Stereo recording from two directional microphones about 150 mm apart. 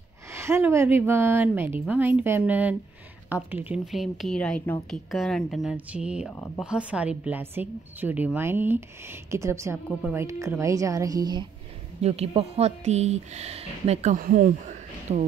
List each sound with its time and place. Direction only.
0.3 s a woman's voice: 15° right (ahead or behind)
6.3 s speech: 15° left (ahead or behind)
6.6 s a woman's voice: 5° right (ahead or behind); by 11.4 s 25° right (ahead or behind)
12.0 s speech: 40° right (ahead or behind)
14.1 s speech: 60° right (ahead or behind)
15.1 s speech: 50° right (ahead or behind)